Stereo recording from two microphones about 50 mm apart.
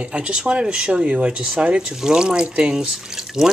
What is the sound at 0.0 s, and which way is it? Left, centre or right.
Speech, right.